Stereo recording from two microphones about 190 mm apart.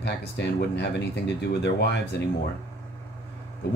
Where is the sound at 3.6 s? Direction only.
60° left (ahead or behind).